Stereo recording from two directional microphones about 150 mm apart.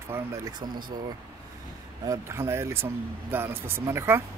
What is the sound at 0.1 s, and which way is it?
Speech, 15° right (ahead or behind).